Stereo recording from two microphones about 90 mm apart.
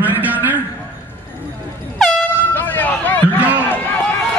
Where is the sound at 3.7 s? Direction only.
20° left (ahead or behind).